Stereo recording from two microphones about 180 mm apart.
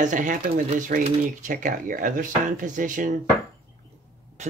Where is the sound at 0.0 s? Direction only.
45° right (ahead or behind).